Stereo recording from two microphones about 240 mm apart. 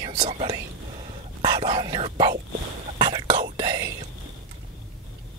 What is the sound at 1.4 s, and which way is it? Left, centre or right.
Whispering, centre.